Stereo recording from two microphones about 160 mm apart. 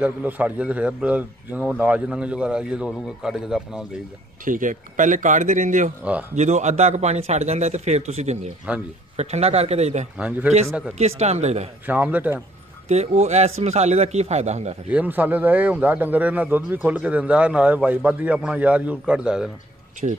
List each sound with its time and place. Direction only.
0.0 s a man's voice: 10° right (ahead or behind)
4.5 s a man's voice: 55° right (ahead or behind)
8.7 s a man's voice: 10° right (ahead or behind)
9.1 s a man's voice: 45° right (ahead or behind)
10.1 s a man's voice: 5° right (ahead or behind)
10.5 s a man's voice: 45° right (ahead or behind)
11.8 s a man's voice: 10° right (ahead or behind)
12.8 s a man's voice: 40° right (ahead or behind)
14.9 s a man's voice: 10° right (ahead or behind)
20.0 s speech: 40° right (ahead or behind)